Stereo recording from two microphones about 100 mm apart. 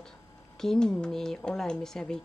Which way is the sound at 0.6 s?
5° left (ahead or behind).